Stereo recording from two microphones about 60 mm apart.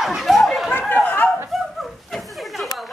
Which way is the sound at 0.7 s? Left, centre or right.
Left.